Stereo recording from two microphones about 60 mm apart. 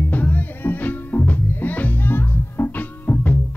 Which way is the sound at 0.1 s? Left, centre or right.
Left.